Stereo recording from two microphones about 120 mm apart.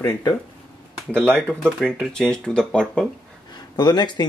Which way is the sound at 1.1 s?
5° left (ahead or behind).